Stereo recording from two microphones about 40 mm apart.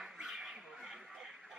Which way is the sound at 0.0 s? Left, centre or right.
Centre.